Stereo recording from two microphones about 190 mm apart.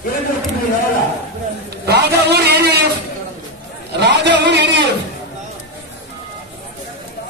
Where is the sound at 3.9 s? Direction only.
65° right (ahead or behind).